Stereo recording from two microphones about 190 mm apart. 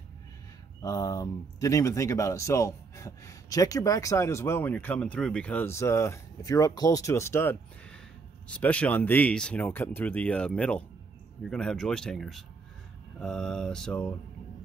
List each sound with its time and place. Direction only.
0.8 s speech: 20° left (ahead or behind)